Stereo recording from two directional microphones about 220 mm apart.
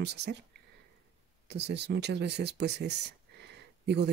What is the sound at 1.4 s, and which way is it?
Speech, 50° right (ahead or behind).